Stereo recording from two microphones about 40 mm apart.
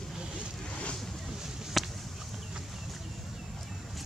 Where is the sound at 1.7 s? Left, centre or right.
Centre.